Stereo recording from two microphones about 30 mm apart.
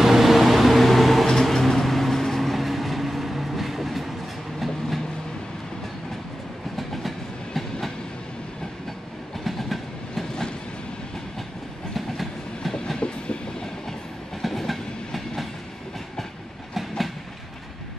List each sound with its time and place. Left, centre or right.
0.0 s a sound: centre
1.3 s vehicle: centre
4.6 s train: centre
6.8 s train: centre
9.4 s train: centre
11.9 s train: centre
13.0 s train: left
14.7 s train: centre